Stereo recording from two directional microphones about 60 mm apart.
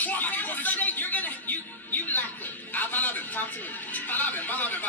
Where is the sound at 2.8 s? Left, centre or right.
Left.